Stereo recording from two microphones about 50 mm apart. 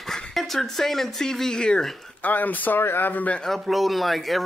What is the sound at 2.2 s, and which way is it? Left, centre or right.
Speech, left.